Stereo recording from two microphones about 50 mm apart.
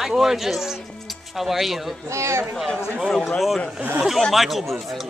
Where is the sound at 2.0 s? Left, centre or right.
Right.